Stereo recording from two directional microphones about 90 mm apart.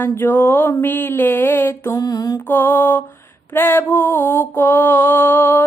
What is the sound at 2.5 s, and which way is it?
Mantra, 25° left (ahead or behind).